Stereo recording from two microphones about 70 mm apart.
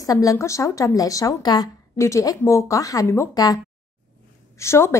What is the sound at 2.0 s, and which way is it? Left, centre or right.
A woman's voice, left.